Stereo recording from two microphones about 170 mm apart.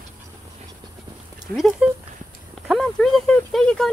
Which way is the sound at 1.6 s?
Centre (ahead or behind).